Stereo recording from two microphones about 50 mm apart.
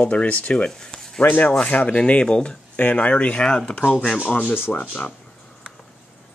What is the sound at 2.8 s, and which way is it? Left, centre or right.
Speech, left.